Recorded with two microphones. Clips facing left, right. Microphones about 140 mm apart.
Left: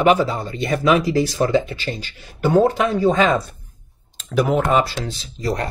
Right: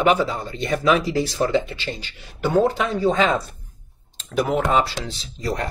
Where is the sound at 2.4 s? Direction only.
40° left (ahead or behind).